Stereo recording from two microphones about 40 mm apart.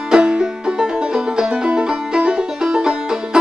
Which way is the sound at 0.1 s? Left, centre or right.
Centre.